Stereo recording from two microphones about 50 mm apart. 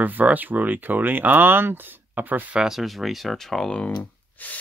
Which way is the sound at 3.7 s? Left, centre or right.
Left.